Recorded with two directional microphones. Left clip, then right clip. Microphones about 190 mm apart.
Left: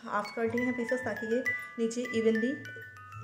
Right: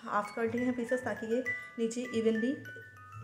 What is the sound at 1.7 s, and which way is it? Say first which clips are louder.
Speech: left 2 dB; 5° left (ahead or behind).